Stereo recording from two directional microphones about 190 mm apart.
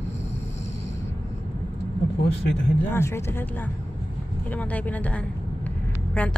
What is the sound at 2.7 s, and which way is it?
Speech, 10° left (ahead or behind).